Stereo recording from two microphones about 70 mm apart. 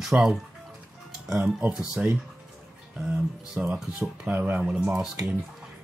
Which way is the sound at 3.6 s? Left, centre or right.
Centre.